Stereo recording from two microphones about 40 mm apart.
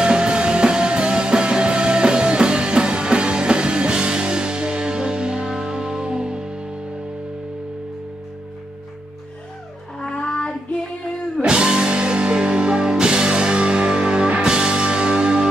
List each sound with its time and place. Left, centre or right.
0.0 s music: right
9.9 s child singing: centre
11.4 s music: right